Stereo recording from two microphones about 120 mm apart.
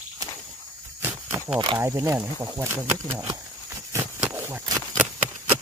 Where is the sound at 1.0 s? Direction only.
20° right (ahead or behind).